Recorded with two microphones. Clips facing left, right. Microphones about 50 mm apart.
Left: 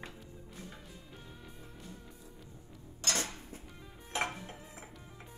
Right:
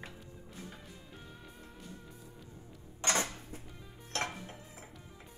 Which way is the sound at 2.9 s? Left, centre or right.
Right.